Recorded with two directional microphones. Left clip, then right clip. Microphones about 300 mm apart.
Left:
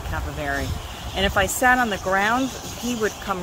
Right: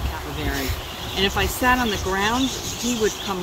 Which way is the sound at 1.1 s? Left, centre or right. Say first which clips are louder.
Left 1 dB; left.